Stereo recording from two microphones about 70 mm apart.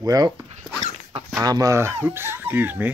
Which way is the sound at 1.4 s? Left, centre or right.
Right.